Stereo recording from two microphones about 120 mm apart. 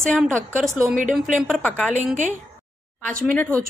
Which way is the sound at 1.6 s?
10° left (ahead or behind).